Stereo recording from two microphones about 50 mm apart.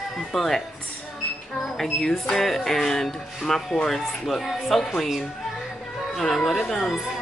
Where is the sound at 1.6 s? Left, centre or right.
Centre.